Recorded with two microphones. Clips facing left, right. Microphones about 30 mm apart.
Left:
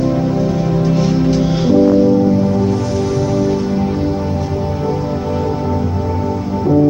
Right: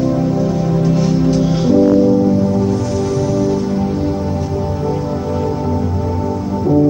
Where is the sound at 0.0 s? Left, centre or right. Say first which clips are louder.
Even; centre.